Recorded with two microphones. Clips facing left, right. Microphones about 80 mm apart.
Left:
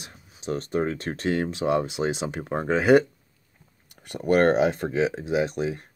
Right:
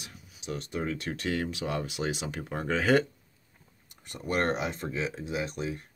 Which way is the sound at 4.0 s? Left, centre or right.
Left.